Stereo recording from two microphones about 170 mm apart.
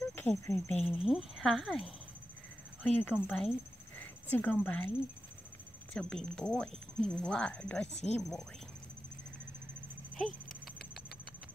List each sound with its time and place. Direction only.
0.1 s speech: 10° left (ahead or behind)
5.9 s speech: 5° left (ahead or behind)
7.9 s speech: 40° left (ahead or behind)